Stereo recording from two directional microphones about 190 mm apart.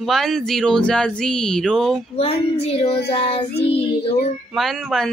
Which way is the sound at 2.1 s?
30° left (ahead or behind).